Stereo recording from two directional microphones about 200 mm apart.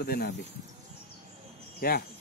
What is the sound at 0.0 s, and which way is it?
Speech, 50° left (ahead or behind).